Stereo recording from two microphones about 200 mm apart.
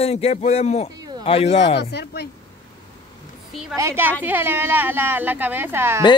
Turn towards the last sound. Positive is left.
turn(degrees=-10)  # may be behind; listen again after turning